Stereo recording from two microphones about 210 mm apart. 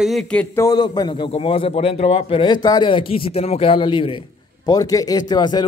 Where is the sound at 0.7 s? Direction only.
20° left (ahead or behind).